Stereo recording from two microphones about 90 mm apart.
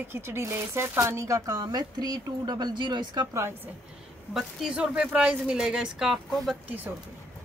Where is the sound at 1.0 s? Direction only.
35° right (ahead or behind); by 3.2 s 55° right (ahead or behind).